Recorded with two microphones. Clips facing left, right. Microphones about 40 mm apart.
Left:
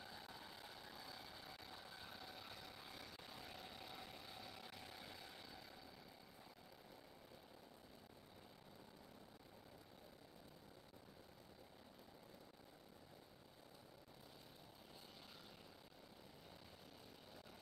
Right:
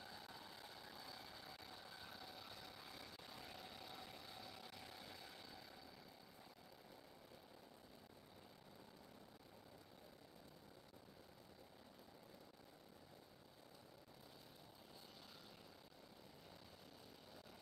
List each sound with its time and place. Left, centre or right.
0.0 s vehicle: centre